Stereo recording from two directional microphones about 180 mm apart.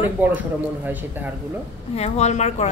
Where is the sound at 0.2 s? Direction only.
10° right (ahead or behind).